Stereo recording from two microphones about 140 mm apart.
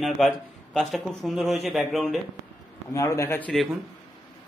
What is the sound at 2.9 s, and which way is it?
Speech, 20° left (ahead or behind).